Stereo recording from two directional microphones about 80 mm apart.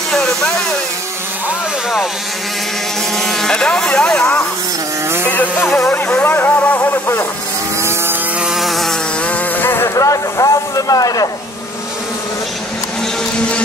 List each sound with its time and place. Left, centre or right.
0.1 s a sound: centre
3.2 s speech: centre
5.3 s music: left
8.4 s insect: centre
9.2 s insect: left
9.8 s speech: left